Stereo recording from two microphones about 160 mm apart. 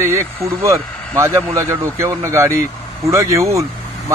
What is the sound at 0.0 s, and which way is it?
Speech, 15° right (ahead or behind).